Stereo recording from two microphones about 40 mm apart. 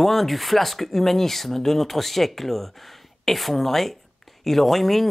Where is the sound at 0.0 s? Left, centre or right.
Centre.